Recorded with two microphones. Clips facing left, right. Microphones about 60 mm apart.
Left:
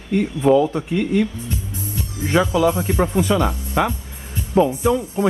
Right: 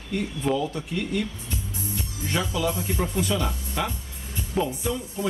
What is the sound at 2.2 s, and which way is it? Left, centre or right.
Speech, left.